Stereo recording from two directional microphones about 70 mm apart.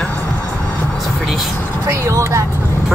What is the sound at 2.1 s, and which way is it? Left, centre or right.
Speech, right.